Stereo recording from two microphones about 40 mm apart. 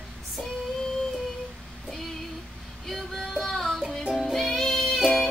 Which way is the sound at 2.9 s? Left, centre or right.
Centre.